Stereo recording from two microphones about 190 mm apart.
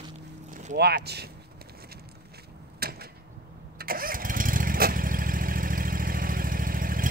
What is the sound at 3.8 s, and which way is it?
Engine starting, 50° right (ahead or behind).